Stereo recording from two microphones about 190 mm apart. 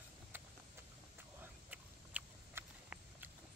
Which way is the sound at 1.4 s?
10° right (ahead or behind).